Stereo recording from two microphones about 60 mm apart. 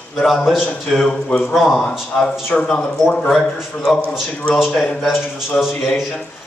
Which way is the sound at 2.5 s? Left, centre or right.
Centre.